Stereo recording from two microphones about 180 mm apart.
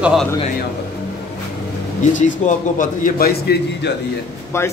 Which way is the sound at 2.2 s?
45° left (ahead or behind).